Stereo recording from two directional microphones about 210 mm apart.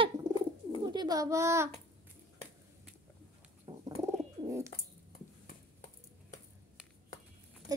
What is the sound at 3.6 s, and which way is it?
Bird, 15° right (ahead or behind).